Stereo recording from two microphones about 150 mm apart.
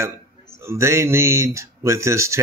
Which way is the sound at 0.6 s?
15° right (ahead or behind).